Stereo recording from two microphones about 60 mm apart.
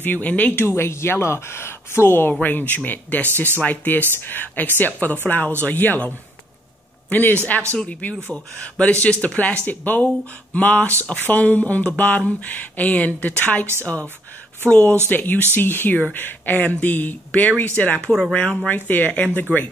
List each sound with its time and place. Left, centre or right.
0.0 s speech: left
0.6 s speech: left
2.4 s speech: left
7.1 s a man's voice: left
14.7 s speech: left